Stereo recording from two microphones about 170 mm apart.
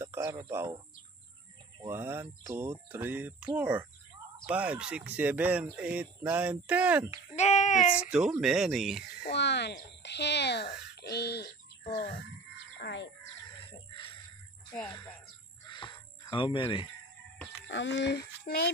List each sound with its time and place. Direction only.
0.0 s speech: 15° right (ahead or behind)
1.8 s speech: 15° right (ahead or behind)
7.3 s child singing: 40° left (ahead or behind)
8.1 s speech: 5° right (ahead or behind)
9.2 s speech: 90° left; by 11.5 s 70° left (ahead or behind)
12.8 s speech: 90° left
13.7 s wild animals: 30° left (ahead or behind)
14.9 s speech: 25° left (ahead or behind)
15.7 s a sound: 30° left (ahead or behind)
17.6 s speech: 90° left
18.5 s speech: 60° left (ahead or behind)